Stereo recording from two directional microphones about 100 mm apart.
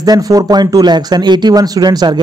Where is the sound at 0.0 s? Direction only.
40° right (ahead or behind).